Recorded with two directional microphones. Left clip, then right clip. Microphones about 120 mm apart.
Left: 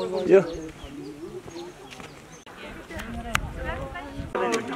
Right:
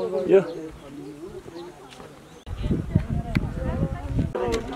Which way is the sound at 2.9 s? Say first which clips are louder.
Right 5 dB; 40° left (ahead or behind).